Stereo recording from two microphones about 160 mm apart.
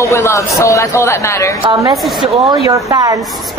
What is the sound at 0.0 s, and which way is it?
A man's voice, 20° left (ahead or behind).